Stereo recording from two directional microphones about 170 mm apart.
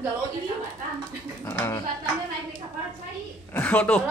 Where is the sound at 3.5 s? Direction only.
10° left (ahead or behind).